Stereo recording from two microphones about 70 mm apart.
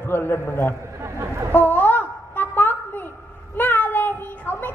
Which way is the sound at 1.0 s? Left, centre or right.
Right.